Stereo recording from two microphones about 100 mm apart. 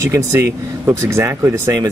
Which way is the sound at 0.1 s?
25° right (ahead or behind).